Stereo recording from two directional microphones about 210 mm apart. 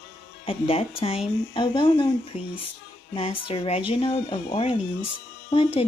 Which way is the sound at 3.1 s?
25° left (ahead or behind).